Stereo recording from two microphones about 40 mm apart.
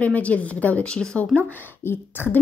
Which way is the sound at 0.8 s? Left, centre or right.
Left.